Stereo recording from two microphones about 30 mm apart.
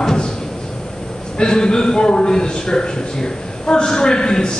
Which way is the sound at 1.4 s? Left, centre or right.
Left.